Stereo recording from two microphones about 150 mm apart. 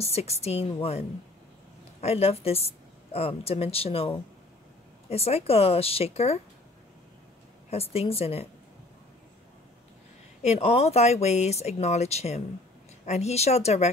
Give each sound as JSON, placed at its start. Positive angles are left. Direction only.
{"t": 0.0, "sound": "a woman's voice", "side_deg": 45}
{"t": 7.7, "sound": "a woman's voice", "side_deg": 40}
{"t": 10.4, "sound": "speech", "side_deg": 45}